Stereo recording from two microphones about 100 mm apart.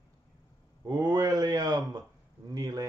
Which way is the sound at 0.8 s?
40° right (ahead or behind).